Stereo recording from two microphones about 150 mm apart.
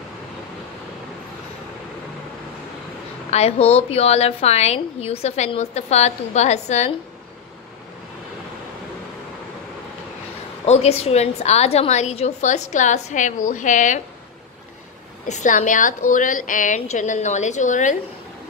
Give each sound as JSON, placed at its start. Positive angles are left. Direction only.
{"t": 3.3, "sound": "a woman's voice", "side_deg": 45}
{"t": 10.6, "sound": "a woman's voice", "side_deg": 45}
{"t": 15.2, "sound": "a woman's voice", "side_deg": 55}